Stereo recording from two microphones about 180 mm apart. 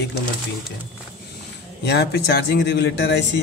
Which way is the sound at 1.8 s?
70° left (ahead or behind).